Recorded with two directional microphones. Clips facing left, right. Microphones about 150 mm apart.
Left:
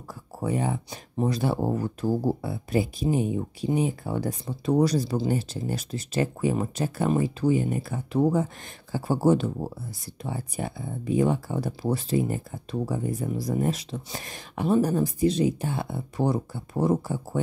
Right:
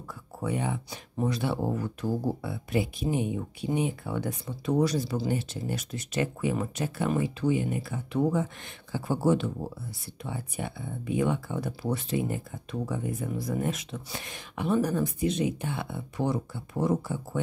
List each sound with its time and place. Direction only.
0.4 s speech: 35° left (ahead or behind)